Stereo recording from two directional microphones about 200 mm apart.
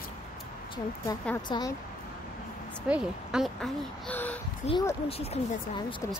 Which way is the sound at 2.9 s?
5° right (ahead or behind).